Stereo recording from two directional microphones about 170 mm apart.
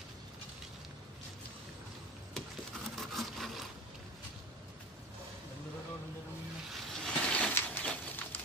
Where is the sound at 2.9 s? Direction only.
Centre (ahead or behind).